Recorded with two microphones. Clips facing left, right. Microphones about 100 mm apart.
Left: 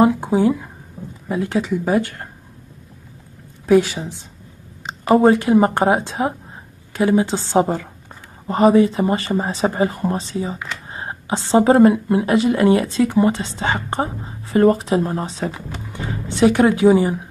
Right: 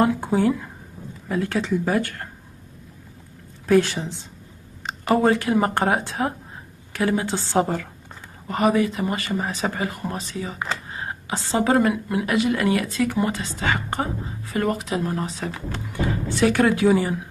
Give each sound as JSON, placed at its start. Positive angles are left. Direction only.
{"t": 0.0, "sound": "a woman's voice", "side_deg": 20}
{"t": 3.6, "sound": "a woman's voice", "side_deg": 15}